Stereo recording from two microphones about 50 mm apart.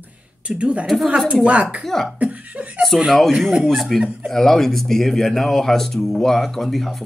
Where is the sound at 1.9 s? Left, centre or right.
Centre.